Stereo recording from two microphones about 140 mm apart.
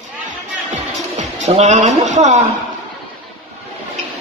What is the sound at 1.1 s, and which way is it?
Speech, 55° right (ahead or behind).